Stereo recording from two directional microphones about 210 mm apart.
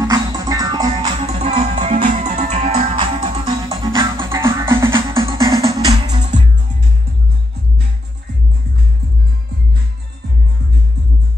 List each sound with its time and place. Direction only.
0.1 s music: 20° right (ahead or behind)
3.4 s music: 20° right (ahead or behind)